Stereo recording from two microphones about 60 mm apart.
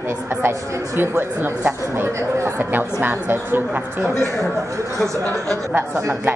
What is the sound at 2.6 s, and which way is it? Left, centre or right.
Speech, right.